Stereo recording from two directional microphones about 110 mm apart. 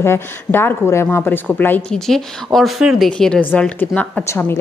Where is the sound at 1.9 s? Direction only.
5° left (ahead or behind); by 4.5 s 20° left (ahead or behind).